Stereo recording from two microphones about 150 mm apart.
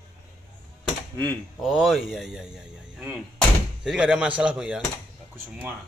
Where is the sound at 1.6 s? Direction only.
Centre (ahead or behind).